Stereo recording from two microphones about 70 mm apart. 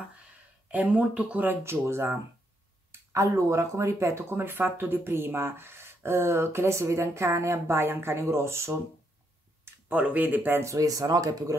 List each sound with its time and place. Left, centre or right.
0.7 s speech: right
1.6 s speech: right
4.4 s speech: right
9.8 s speech: right
10.6 s speech: right